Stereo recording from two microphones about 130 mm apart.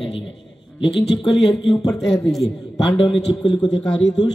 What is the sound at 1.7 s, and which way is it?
Speech, 25° left (ahead or behind).